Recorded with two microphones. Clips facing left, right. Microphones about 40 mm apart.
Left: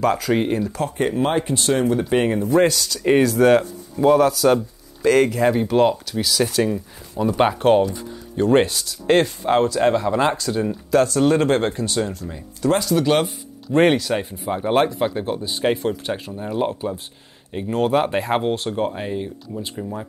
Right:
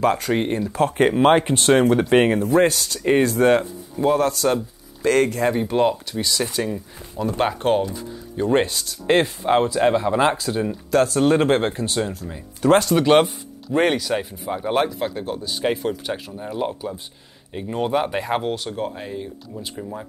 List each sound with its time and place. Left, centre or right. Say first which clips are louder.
0.0 s speech: left 1 dB; centre
0.7 s speech: right 4 dB; right
1.0 s speech: right 5 dB; right
2.0 s speech: right 2 dB; right
3.3 s speech: left 2 dB; centre
5.5 s speech: left 2 dB; centre
6.6 s speech: left 5 dB; centre
10.7 s speech: left 1 dB; centre
11.1 s speech: even; centre
13.7 s speech: left 3 dB; centre; by 15.5 s left
15.6 s speech: left 2 dB; centre
18.9 s speech: left 4 dB; left
19.5 s speech: left 3 dB; centre